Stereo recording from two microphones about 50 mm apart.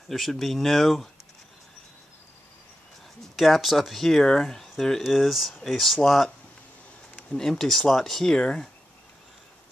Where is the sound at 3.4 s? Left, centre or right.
Centre.